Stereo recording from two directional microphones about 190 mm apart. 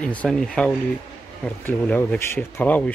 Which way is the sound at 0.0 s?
5° left (ahead or behind).